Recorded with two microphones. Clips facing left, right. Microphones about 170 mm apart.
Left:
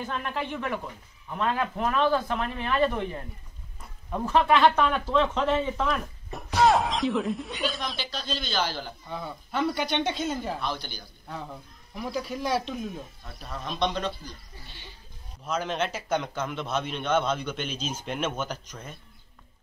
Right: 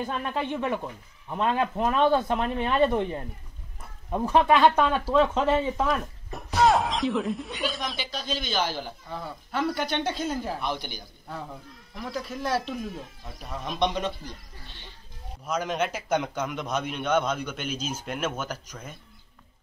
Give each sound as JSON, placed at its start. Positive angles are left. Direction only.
{"t": 0.0, "sound": "speech", "side_deg": -15}
{"t": 4.1, "sound": "a man's voice", "side_deg": -15}
{"t": 9.1, "sound": "speech", "side_deg": 0}
{"t": 10.7, "sound": "a man's voice", "side_deg": -15}
{"t": 11.2, "sound": "speech", "side_deg": 0}
{"t": 15.4, "sound": "a man's voice", "side_deg": -10}